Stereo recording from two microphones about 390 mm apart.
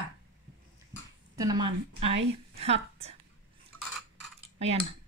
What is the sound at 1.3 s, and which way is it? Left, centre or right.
A woman's voice, centre.